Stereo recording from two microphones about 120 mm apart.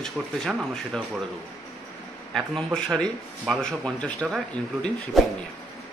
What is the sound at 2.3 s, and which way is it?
Speech, 5° left (ahead or behind).